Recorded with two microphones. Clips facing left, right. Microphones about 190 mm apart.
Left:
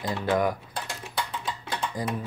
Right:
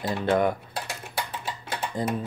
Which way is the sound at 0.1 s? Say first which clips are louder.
Right 2 dB; 25° right (ahead or behind).